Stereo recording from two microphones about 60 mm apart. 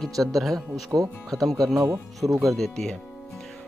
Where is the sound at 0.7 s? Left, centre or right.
Right.